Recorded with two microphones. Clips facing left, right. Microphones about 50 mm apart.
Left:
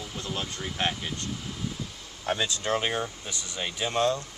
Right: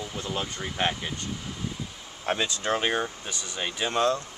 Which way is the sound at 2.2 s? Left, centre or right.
Centre.